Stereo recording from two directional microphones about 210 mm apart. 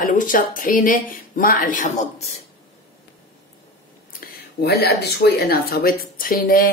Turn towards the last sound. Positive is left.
turn(degrees=45)  # may be behind; listen again after turning